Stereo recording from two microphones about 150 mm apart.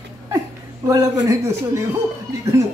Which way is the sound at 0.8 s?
25° right (ahead or behind).